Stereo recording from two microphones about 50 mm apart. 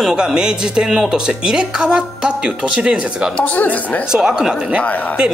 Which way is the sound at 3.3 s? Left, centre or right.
Left.